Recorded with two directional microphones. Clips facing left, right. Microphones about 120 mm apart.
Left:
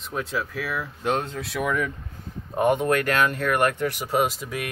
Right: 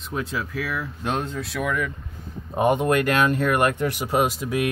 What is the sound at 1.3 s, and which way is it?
Speech, 5° left (ahead or behind).